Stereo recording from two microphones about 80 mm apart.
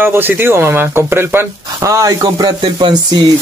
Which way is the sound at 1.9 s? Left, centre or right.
Right.